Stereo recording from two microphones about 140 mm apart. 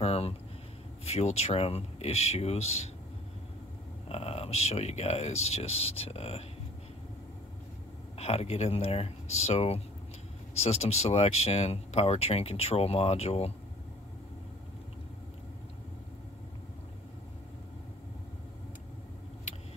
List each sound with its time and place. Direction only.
0.0 s a sound: 45° left (ahead or behind)
1.0 s speech: 50° left (ahead or behind)
4.1 s speech: 45° left (ahead or behind)
8.2 s speech: 50° left (ahead or behind)